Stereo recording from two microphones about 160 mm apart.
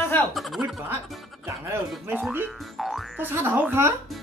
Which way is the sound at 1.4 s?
15° right (ahead or behind).